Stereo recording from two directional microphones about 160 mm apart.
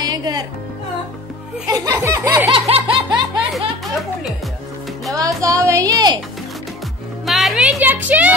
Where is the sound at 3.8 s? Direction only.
Centre (ahead or behind).